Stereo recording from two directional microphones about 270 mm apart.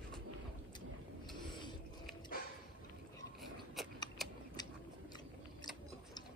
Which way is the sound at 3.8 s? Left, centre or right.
Centre.